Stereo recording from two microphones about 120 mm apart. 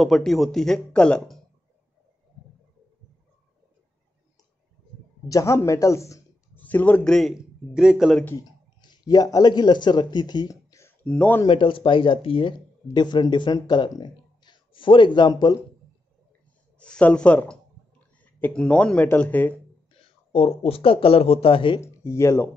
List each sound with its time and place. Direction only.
0.0 s speech: centre (ahead or behind)
5.3 s speech: 25° left (ahead or behind)
6.6 s speech: 15° left (ahead or behind)
7.2 s speech: centre (ahead or behind)
8.4 s speech: 35° left (ahead or behind)
11.1 s speech: 10° left (ahead or behind)
11.4 s speech: 45° left (ahead or behind)
12.9 s speech: 40° left (ahead or behind)
16.8 s speech: 10° left (ahead or behind)
20.3 s speech: 55° left (ahead or behind)
21.8 s speech: 25° left (ahead or behind)